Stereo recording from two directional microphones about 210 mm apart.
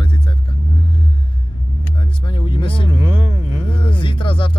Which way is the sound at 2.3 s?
25° left (ahead or behind).